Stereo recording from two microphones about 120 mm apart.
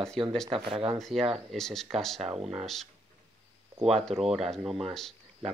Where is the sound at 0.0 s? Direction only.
5° left (ahead or behind).